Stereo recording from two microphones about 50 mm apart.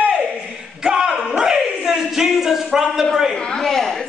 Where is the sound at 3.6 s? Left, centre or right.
Centre.